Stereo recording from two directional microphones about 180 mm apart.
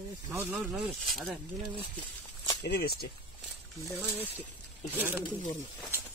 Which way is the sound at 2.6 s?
65° left (ahead or behind).